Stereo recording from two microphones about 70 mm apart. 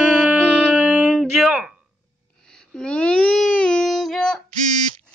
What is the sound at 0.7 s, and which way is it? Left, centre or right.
Music, centre.